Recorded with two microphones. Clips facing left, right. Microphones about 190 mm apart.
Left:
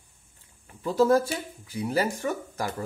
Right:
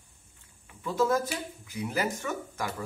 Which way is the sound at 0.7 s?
35° left (ahead or behind).